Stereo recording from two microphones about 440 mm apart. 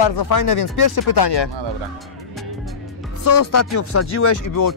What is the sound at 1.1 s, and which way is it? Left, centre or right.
Speech, left.